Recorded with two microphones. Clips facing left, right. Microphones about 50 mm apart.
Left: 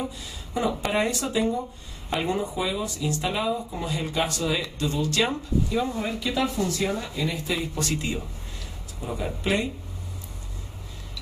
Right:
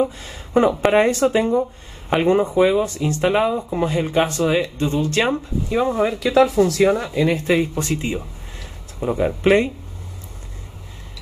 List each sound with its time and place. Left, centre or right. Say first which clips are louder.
0.0 s speech: right 11 dB; right
5.9 s speech: right 11 dB; right
6.7 s speech: right 10 dB; right
7.7 s speech: right 5 dB; right
9.0 s speech: right 11 dB; right